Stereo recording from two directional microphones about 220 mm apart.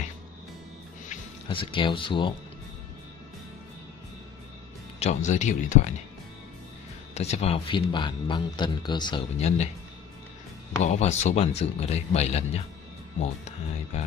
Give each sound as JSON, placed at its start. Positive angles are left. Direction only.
{"t": 1.5, "sound": "speech", "side_deg": 20}
{"t": 4.9, "sound": "speech", "side_deg": 30}
{"t": 7.2, "sound": "speech", "side_deg": 30}
{"t": 10.8, "sound": "speech", "side_deg": 30}
{"t": 13.9, "sound": "speech", "side_deg": 30}